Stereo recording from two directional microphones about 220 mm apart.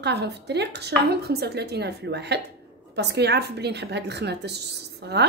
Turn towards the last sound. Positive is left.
turn(degrees=-50)  # may be behind; listen again after turning